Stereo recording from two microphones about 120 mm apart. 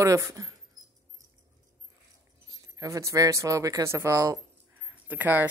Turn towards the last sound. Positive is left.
turn(degrees=-15)  # may be behind; listen again after turning